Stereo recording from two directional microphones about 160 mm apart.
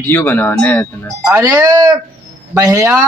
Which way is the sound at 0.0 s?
10° left (ahead or behind).